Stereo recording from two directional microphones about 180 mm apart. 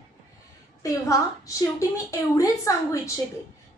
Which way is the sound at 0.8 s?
20° left (ahead or behind).